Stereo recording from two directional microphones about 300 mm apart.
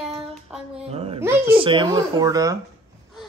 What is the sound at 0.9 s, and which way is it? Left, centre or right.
Speech, centre.